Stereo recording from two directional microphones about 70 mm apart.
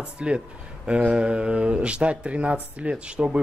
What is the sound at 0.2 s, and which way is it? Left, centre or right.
A man's voice, centre.